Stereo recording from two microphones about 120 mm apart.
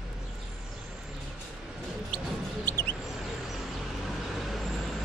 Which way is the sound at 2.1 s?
15° left (ahead or behind).